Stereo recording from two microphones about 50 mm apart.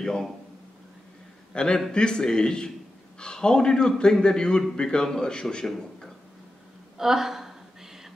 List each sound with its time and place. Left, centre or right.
0.0 s a man's voice: centre
1.5 s a man's voice: centre
7.0 s a woman's voice: centre